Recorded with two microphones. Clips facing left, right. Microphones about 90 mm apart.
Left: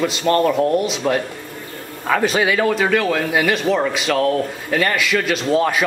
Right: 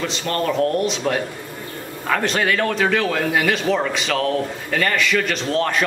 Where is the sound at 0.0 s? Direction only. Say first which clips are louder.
Left 6 dB; 5° left (ahead or behind).